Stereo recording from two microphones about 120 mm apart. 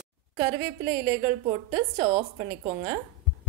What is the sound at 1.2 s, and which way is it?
Speech, 45° right (ahead or behind).